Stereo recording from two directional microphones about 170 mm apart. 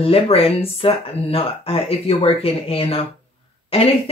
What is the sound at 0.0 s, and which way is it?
Speech, 35° left (ahead or behind).